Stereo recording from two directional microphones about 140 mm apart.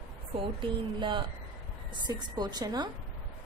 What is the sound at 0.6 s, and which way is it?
A woman's voice, 35° right (ahead or behind).